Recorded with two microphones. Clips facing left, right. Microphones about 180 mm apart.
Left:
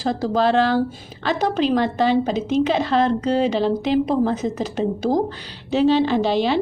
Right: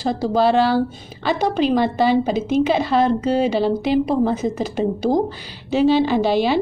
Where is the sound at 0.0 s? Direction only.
Centre (ahead or behind).